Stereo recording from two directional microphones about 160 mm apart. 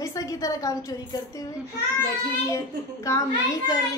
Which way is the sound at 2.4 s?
20° left (ahead or behind).